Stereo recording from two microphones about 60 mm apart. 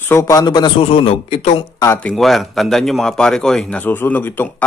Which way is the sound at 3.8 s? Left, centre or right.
Left.